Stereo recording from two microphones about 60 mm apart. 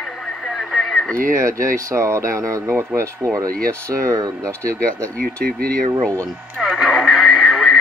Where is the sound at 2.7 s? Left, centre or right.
Right.